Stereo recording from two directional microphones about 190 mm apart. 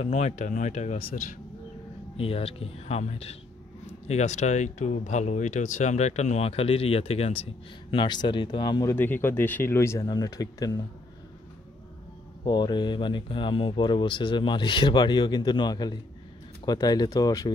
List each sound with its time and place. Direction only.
0.0 s speech: 35° left (ahead or behind)
8.9 s speech: 10° left (ahead or behind)
12.4 s speech: 20° left (ahead or behind)